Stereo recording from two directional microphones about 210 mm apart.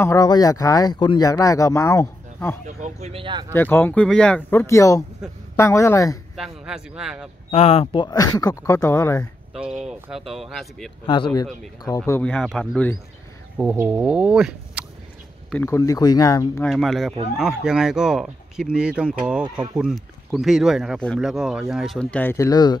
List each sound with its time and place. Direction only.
0.0 s speech: 15° left (ahead or behind)
2.6 s speech: 35° right (ahead or behind)
3.5 s speech: 10° left (ahead or behind)
6.3 s speech: 5° right (ahead or behind)
7.5 s speech: 25° left (ahead or behind)
9.5 s speech: centre (ahead or behind)
11.1 s speech: 20° left (ahead or behind)
12.0 s speech: 5° left (ahead or behind)
15.5 s speech: 10° left (ahead or behind)
16.6 s speech: centre (ahead or behind); by 22.8 s 20° left (ahead or behind)